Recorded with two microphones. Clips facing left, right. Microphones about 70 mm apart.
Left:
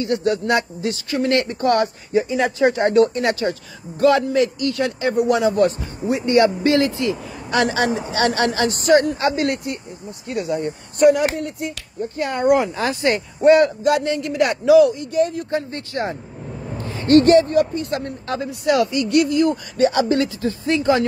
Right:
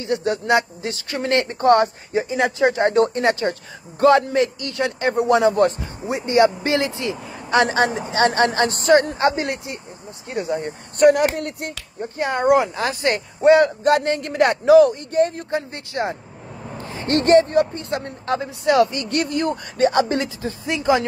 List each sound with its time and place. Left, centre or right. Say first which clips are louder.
0.0 s speech: left 2 dB; right
11.0 s speech: even; right
11.3 s speech: left 1 dB; right
12.0 s speech: even; right
13.4 s a man's voice: left 1 dB; right
13.8 s speech: right 1 dB; right
15.5 s speech: left 1 dB; right
16.8 s a sound: left 8 dB; right
17.2 s speech: right 3 dB; right
17.9 s speech: right 4 dB; right
20.4 s speech: left 1 dB; centre